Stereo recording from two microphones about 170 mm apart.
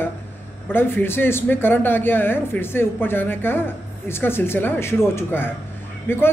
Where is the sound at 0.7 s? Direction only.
10° left (ahead or behind).